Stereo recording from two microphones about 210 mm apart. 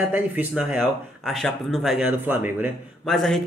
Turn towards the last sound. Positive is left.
turn(degrees=0)  # may be behind; listen again after turning